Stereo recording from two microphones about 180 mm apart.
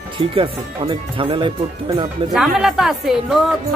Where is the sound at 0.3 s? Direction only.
30° right (ahead or behind).